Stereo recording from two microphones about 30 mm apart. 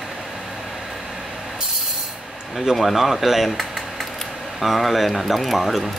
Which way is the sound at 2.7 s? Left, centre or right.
Centre.